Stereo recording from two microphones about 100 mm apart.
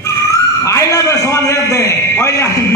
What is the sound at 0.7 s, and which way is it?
A man's voice, 30° left (ahead or behind).